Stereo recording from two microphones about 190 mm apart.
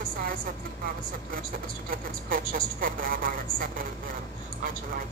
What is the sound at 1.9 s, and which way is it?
A woman's voice, 50° right (ahead or behind).